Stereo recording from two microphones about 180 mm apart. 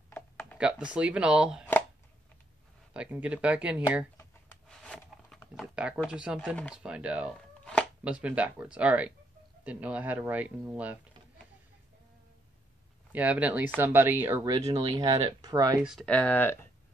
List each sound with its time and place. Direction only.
0.1 s a sound: 10° left (ahead or behind)
0.6 s speech: 5° right (ahead or behind)
2.9 s speech: 5° right (ahead or behind)
4.6 s a sound: 5° left (ahead or behind)
5.8 s speech: 5° right (ahead or behind)
13.1 s speech: 10° right (ahead or behind)
15.8 s speech: centre (ahead or behind)